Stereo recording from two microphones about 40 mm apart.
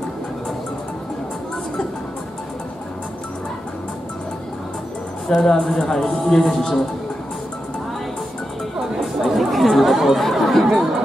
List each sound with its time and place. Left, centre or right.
5.3 s speech: centre
8.7 s chatter: centre
10.1 s speech: centre